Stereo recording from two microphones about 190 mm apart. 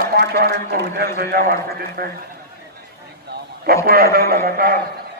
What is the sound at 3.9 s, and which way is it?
Speech, 55° right (ahead or behind).